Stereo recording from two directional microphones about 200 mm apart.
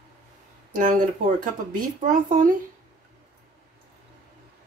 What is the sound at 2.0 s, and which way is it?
Speech, 40° right (ahead or behind).